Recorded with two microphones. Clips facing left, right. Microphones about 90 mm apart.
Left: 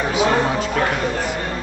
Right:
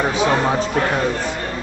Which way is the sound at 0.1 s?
30° right (ahead or behind).